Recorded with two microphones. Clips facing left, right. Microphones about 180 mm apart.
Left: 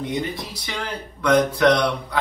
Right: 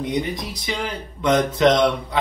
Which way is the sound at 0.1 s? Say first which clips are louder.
Right 2 dB; 15° right (ahead or behind).